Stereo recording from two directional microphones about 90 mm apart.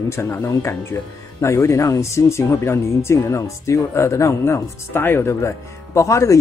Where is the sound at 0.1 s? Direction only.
30° left (ahead or behind).